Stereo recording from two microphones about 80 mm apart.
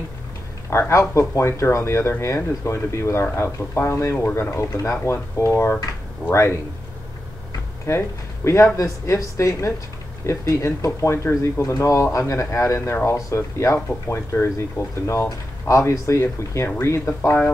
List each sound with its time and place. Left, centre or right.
0.7 s speech: left
7.9 s speech: left